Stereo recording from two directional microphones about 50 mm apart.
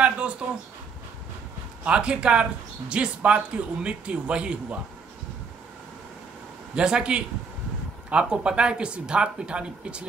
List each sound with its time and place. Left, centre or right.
0.4 s a sound: right
1.9 s speech: right
6.7 s speech: centre